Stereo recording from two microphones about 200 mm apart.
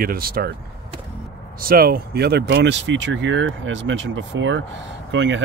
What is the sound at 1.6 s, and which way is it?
Speech, 50° right (ahead or behind).